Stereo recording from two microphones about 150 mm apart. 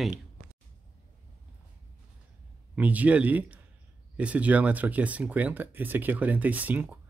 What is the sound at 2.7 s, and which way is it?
Speech, 10° right (ahead or behind).